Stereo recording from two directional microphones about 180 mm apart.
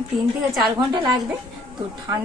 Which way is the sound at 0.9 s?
25° right (ahead or behind).